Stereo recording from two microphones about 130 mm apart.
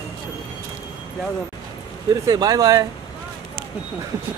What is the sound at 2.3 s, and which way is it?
Speech, 30° right (ahead or behind).